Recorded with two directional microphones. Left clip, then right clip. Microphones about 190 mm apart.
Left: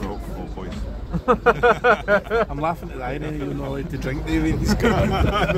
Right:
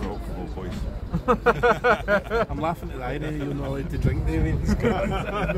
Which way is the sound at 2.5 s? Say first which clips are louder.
Left 3 dB; 15° right (ahead or behind).